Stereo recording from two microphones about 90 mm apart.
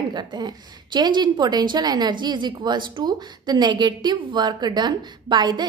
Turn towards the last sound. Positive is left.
turn(degrees=-55)  # may be behind; listen again after turning